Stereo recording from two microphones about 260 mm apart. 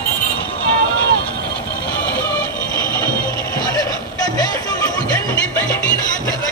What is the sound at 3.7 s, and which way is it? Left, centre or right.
Vehicle, centre.